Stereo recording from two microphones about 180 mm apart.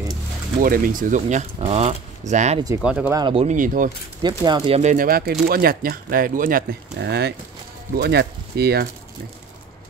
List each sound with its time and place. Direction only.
0.6 s speech: 50° right (ahead or behind)
2.8 s speech: 5° right (ahead or behind)
3.2 s speech: 25° right (ahead or behind)
3.4 s speech: 45° right (ahead or behind)
4.2 s speech: 25° right (ahead or behind)
4.7 s speech: 45° right (ahead or behind); by 8.8 s 65° right (ahead or behind)